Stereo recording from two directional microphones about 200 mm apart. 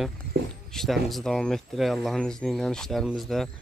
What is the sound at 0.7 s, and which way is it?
Speech, centre (ahead or behind).